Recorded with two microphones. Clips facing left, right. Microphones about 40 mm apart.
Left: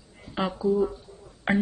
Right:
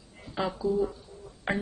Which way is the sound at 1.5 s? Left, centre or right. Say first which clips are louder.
Left 6 dB; left.